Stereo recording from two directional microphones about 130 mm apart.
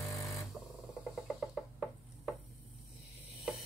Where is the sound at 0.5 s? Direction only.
Centre (ahead or behind).